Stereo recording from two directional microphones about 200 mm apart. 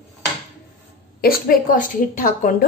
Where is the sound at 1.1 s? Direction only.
50° left (ahead or behind).